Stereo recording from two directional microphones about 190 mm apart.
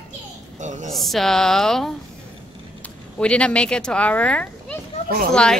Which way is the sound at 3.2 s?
5° left (ahead or behind).